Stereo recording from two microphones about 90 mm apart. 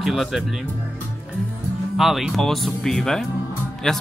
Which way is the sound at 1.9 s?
Centre (ahead or behind).